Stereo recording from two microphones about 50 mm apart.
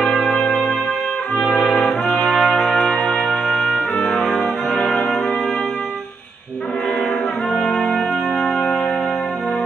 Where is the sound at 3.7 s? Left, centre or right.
Centre.